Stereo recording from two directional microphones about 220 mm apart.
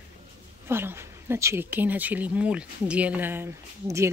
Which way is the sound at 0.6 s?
10° right (ahead or behind).